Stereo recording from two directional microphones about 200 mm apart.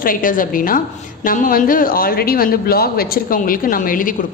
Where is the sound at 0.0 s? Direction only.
45° left (ahead or behind).